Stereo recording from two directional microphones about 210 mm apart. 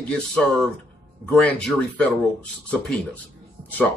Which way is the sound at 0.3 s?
5° left (ahead or behind).